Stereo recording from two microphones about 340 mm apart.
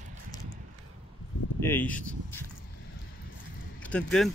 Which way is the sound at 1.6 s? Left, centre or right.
Centre.